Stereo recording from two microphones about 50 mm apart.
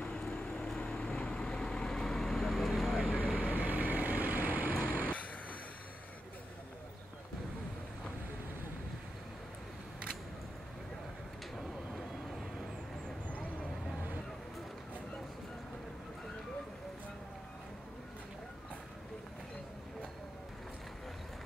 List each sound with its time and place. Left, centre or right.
0.0 s vehicle: centre
3.4 s vehicle: right
11.5 s vehicle: centre